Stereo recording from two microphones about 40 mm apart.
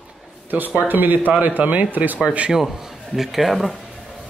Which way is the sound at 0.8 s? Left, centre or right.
Right.